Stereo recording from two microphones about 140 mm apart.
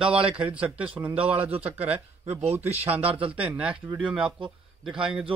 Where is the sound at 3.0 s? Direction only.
40° right (ahead or behind).